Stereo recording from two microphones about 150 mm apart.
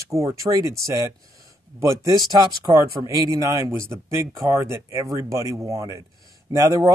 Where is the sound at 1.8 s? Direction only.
25° right (ahead or behind).